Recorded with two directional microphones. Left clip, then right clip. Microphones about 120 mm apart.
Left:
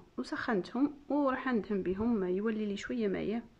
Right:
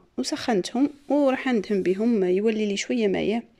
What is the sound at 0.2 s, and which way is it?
Speech, 20° right (ahead or behind).